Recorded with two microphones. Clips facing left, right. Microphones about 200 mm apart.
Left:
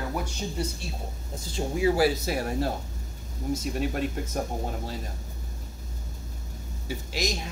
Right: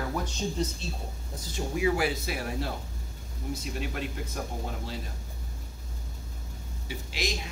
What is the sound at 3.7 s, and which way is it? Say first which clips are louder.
Speech: left 6 dB; 45° left (ahead or behind).